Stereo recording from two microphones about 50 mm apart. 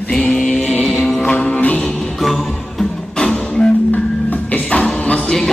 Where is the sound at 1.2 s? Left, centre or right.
Left.